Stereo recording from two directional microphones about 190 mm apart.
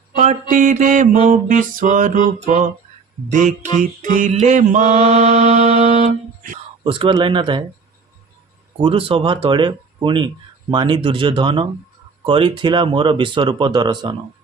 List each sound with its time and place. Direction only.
0.1 s mantra: 40° right (ahead or behind)
3.3 s music: 40° right (ahead or behind)
6.8 s speech: 25° right (ahead or behind)
8.8 s speech: 30° right (ahead or behind)